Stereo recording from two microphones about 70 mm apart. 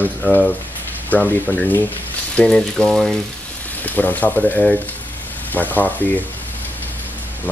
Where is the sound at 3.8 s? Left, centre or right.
Left.